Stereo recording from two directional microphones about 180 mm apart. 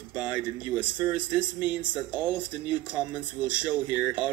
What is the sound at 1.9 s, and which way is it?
Speech, 10° right (ahead or behind).